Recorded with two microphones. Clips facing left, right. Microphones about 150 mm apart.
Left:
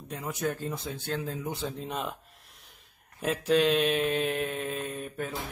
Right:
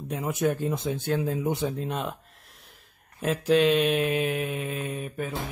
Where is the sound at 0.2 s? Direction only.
20° right (ahead or behind).